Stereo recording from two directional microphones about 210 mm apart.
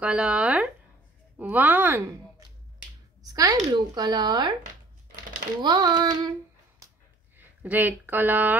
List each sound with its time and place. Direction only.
0.0 s speech: 5° right (ahead or behind)
3.2 s a sound: 15° right (ahead or behind)
3.7 s speech: 20° right (ahead or behind)
5.6 s speech: 20° right (ahead or behind)
7.3 s speech: 10° right (ahead or behind)